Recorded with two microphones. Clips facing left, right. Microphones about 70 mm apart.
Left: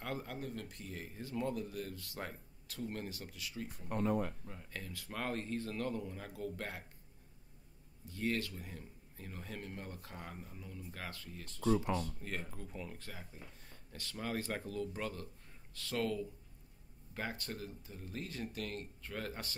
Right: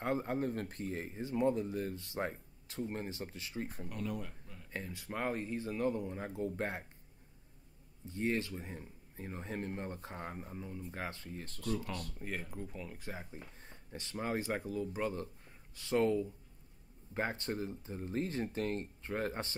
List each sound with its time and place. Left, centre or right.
0.0 s speech: right
3.9 s speech: left
4.7 s speech: right
8.0 s speech: right
12.3 s speech: centre
13.0 s speech: right